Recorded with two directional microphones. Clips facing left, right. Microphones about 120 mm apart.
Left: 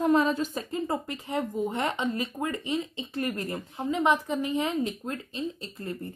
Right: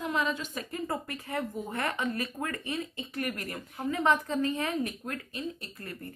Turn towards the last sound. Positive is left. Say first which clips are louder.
# left 6 dB
turn(degrees=25)  # may be behind; listen again after turning